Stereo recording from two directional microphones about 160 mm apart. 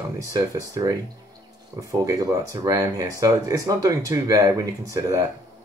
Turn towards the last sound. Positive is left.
turn(degrees=-20)  # may be behind; listen again after turning